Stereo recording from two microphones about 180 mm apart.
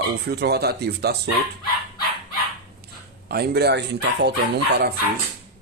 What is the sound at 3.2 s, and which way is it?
Speech, 60° right (ahead or behind).